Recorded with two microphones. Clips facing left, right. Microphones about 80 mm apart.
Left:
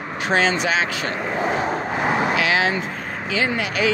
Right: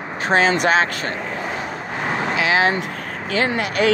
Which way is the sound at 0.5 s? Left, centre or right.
Right.